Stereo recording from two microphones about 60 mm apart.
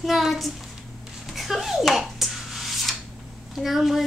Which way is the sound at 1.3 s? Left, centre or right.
Centre.